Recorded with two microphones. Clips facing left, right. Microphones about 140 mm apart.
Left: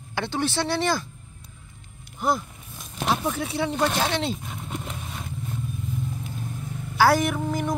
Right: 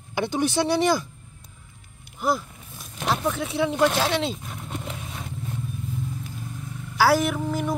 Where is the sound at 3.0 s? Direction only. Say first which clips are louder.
Even; centre (ahead or behind).